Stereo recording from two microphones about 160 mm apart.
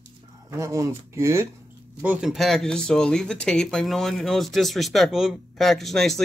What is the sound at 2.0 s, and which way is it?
Speech, 5° right (ahead or behind).